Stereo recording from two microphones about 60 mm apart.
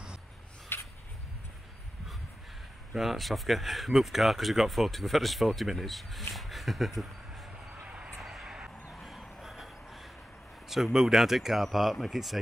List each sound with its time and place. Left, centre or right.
0.7 s a sound: left
2.9 s speech: centre
7.8 s vehicle: centre
8.2 s vehicle: centre
8.9 s a sound: centre
9.4 s vehicle: centre
10.7 s speech: centre